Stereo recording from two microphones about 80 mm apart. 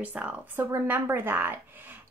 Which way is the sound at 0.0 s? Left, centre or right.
Right.